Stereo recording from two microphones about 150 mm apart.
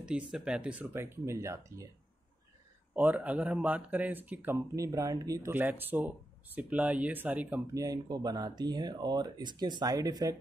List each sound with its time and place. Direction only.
0.0 s speech: 5° right (ahead or behind)
3.0 s speech: 10° right (ahead or behind)
7.7 s speech: 25° right (ahead or behind)